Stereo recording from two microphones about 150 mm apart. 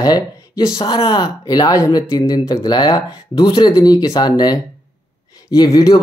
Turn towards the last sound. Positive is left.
turn(degrees=25)  # may be behind; listen again after turning